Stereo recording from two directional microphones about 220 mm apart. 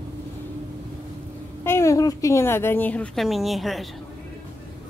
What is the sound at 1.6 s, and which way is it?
A woman's voice, 10° left (ahead or behind).